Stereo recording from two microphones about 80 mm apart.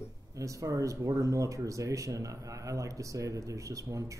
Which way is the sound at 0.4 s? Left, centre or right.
Right.